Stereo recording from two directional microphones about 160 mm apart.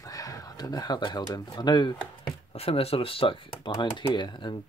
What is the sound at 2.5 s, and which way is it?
Speech, 40° left (ahead or behind).